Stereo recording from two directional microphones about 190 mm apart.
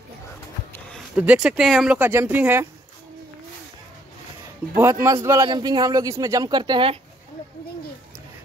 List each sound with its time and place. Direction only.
0.7 s a sound: 5° left (ahead or behind)
1.1 s speech: 5° right (ahead or behind)
4.7 s a man's voice: 15° right (ahead or behind)